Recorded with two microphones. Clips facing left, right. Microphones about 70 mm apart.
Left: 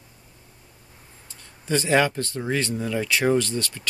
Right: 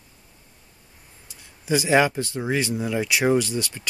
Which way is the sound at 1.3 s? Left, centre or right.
Centre.